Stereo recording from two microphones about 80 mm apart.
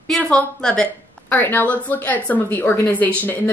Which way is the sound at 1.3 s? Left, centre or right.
Left.